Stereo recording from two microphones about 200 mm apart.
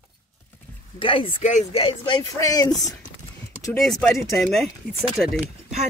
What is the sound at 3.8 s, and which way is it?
Speech, centre (ahead or behind).